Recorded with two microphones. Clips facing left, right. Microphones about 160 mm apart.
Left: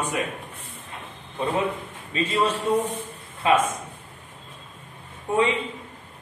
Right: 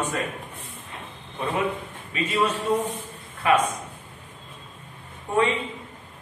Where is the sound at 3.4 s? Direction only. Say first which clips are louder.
Even; 25° left (ahead or behind).